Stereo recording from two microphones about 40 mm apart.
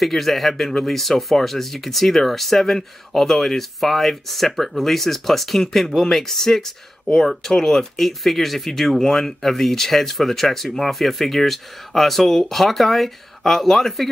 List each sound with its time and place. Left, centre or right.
0.0 s speech: centre